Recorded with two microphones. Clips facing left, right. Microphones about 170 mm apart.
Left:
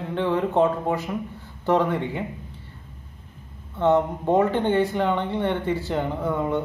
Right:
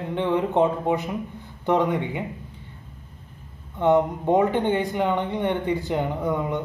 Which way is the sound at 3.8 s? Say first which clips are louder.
Right 1 dB; 15° right (ahead or behind).